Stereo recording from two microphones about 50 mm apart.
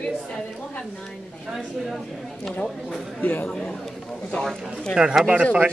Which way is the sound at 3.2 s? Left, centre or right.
Left.